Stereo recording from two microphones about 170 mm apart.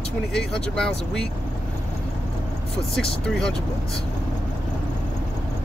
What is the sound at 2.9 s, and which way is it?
Speech, 5° left (ahead or behind).